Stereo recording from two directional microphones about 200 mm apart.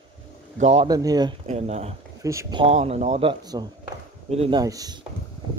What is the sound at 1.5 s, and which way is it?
Speech, 30° right (ahead or behind).